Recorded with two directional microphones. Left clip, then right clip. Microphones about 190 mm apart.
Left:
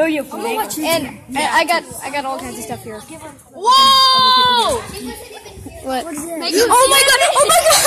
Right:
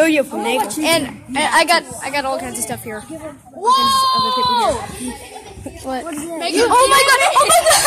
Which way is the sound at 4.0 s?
20° left (ahead or behind).